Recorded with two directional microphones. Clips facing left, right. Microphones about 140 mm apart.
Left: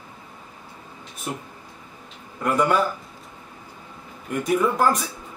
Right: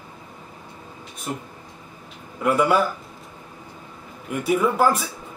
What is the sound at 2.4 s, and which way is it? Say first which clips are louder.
Speech: right 2 dB; 5° right (ahead or behind).